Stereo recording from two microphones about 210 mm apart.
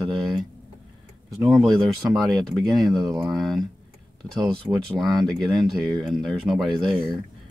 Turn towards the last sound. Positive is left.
turn(degrees=0)  # may be behind; listen again after turning